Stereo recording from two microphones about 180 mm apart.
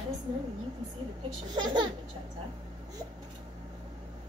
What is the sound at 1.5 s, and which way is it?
Laughter, 25° right (ahead or behind).